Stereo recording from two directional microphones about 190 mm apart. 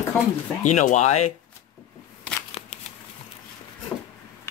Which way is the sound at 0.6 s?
40° left (ahead or behind).